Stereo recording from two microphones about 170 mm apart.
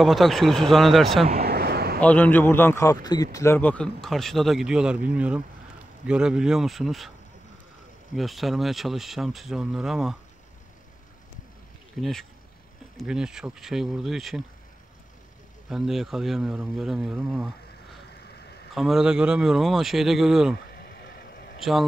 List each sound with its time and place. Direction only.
0.0 s speech: centre (ahead or behind)
1.4 s a sound: 65° right (ahead or behind)
2.0 s speech: 10° left (ahead or behind)
8.1 s speech: centre (ahead or behind)
12.0 s speech: centre (ahead or behind)
15.7 s speech: centre (ahead or behind)
18.8 s speech: centre (ahead or behind)
20.7 s vehicle: 65° left (ahead or behind)
21.5 s speech: centre (ahead or behind)